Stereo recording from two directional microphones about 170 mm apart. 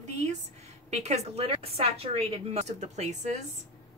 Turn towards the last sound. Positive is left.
turn(degrees=-45)  # may be behind; listen again after turning